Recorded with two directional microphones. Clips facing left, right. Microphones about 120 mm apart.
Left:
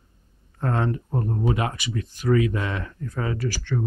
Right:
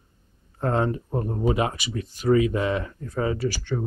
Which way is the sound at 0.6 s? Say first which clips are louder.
Right 2 dB; 20° right (ahead or behind).